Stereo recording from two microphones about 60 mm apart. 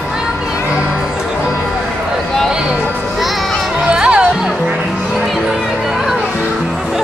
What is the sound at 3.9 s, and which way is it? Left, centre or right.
Music, centre.